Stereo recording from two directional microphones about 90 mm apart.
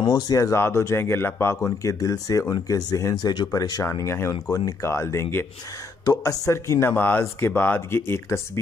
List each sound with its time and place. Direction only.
0.0 s speech: 45° left (ahead or behind)
4.5 s speech: 45° left (ahead or behind)
4.8 s speech: 30° left (ahead or behind)
6.0 s speech: 40° left (ahead or behind)